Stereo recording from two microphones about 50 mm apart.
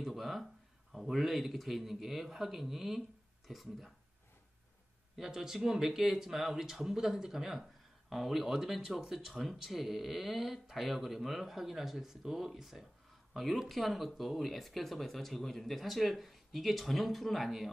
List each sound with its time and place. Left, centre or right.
0.0 s a sound: centre
1.1 s speech: centre
5.1 s speech: centre